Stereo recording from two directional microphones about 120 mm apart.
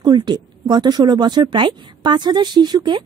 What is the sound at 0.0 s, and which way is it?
Speech, 35° right (ahead or behind).